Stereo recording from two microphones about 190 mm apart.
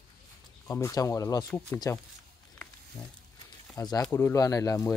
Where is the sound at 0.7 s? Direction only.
15° left (ahead or behind).